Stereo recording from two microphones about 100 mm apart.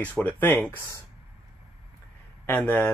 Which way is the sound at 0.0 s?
15° left (ahead or behind).